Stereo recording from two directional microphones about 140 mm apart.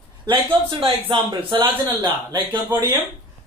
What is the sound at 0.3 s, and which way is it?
A man's voice, 40° right (ahead or behind).